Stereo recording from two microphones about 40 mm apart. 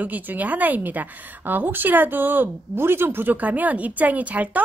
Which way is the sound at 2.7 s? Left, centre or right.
Right.